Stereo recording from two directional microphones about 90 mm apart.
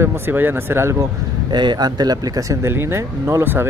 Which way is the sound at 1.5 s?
55° right (ahead or behind).